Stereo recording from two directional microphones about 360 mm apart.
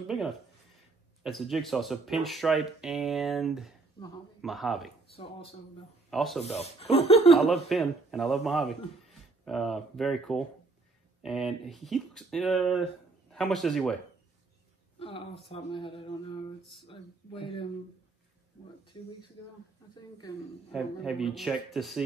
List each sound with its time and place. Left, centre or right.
0.0 s speech: centre
5.1 s speech: centre
6.0 s speech: centre
6.4 s speech: centre
7.4 s speech: centre
15.0 s speech: centre
18.9 s speech: centre
20.7 s speech: centre